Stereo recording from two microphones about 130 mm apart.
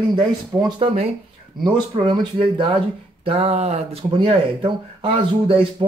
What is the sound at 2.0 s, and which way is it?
Speech, 40° right (ahead or behind).